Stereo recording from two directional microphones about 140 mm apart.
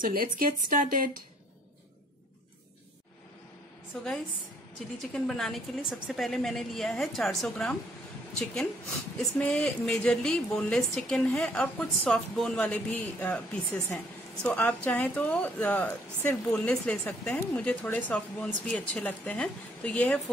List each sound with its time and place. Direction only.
0.0 s speech: 85° right
5.1 s a woman's voice: 5° left (ahead or behind)